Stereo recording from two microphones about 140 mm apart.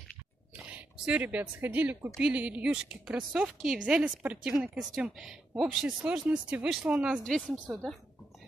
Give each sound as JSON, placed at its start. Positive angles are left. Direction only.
{"t": 0.6, "sound": "speech", "side_deg": -10}
{"t": 7.2, "sound": "speech", "side_deg": 5}